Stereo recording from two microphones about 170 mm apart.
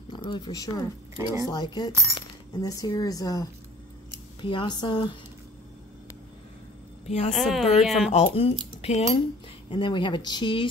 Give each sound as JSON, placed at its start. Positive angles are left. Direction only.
{"t": 0.1, "sound": "speech", "side_deg": 30}
{"t": 1.1, "sound": "speech", "side_deg": -20}
{"t": 1.5, "sound": "speech", "side_deg": 25}
{"t": 7.1, "sound": "speech", "side_deg": 40}
{"t": 7.3, "sound": "speech", "side_deg": 0}
{"t": 8.1, "sound": "speech", "side_deg": 40}